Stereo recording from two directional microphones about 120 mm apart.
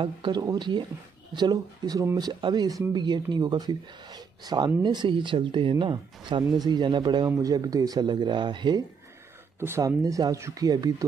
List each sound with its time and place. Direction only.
0.0 s speech: 40° right (ahead or behind)
9.6 s speech: 25° right (ahead or behind)